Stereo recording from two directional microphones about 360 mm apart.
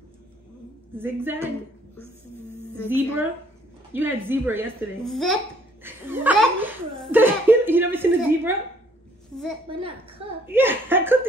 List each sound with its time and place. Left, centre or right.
0.9 s speech: centre
2.9 s speech: centre
9.7 s speech: centre